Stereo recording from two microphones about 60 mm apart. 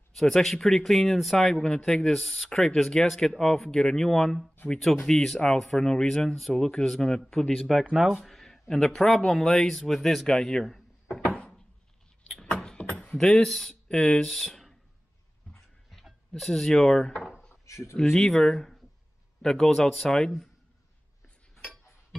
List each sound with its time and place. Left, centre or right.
0.1 s speech: centre
7.9 s speech: centre
11.2 s a sound: centre
12.5 s beatboxing: centre
13.0 s speech: centre
15.9 s speech: centre
17.6 s speech: left
18.1 s speech: centre